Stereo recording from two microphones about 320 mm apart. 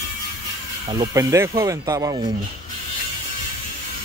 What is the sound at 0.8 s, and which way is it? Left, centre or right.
Speech, centre.